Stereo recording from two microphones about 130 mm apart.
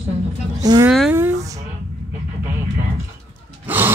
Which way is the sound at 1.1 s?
20° right (ahead or behind).